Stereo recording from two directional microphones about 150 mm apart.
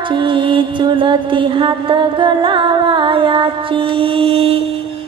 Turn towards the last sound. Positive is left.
turn(degrees=-40)  # may be behind; listen again after turning